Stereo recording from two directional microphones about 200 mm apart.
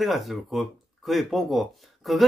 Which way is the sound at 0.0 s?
Centre (ahead or behind).